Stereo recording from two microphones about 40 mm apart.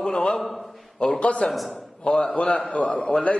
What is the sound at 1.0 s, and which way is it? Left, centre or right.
A man's voice, left.